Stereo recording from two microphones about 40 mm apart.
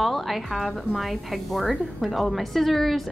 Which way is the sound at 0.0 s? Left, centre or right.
Centre.